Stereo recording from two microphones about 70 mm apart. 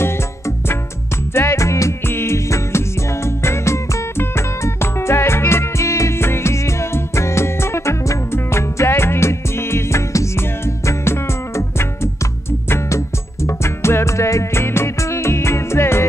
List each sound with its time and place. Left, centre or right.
1.3 s music: left